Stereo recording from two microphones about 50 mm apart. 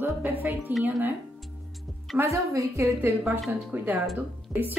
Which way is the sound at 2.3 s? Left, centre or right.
Right.